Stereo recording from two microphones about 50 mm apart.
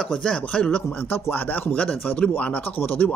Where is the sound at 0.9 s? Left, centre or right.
Left.